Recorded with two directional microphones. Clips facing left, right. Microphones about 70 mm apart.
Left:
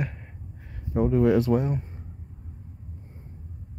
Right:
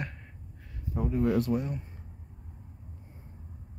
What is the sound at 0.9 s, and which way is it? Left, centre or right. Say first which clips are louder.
Speech: left 7 dB; left.